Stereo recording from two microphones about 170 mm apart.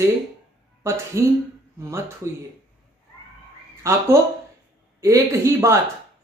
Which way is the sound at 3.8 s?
15° right (ahead or behind).